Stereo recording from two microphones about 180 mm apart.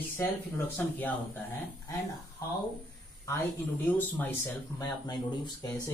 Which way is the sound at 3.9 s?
10° left (ahead or behind).